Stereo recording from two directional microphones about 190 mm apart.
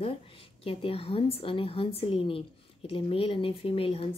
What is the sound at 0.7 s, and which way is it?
Speech, 30° left (ahead or behind).